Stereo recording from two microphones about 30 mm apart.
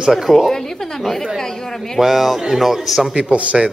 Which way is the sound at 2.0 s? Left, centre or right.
Centre.